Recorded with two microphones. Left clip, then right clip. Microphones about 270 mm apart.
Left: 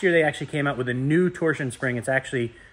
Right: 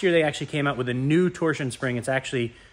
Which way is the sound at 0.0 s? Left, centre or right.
Centre.